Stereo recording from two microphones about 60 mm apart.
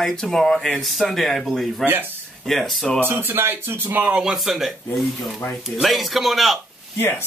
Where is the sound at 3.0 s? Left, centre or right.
Right.